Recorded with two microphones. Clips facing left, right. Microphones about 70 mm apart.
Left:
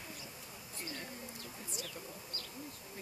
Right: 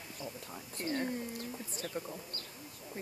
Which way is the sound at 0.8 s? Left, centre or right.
Right.